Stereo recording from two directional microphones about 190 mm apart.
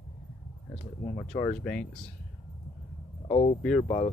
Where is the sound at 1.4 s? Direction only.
5° left (ahead or behind).